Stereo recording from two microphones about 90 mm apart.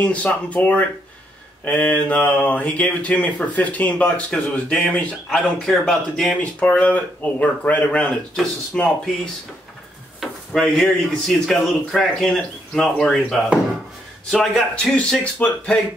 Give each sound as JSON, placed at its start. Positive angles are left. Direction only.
{"t": 0.0, "sound": "speech", "side_deg": 15}
{"t": 6.6, "sound": "speech", "side_deg": 15}